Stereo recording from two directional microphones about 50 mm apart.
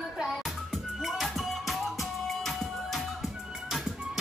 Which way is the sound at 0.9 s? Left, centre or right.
Centre.